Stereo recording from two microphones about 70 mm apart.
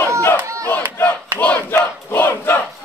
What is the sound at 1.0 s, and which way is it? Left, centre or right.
Battle cry, left.